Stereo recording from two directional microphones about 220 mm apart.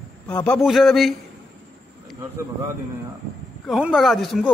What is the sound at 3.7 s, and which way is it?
Speech, centre (ahead or behind).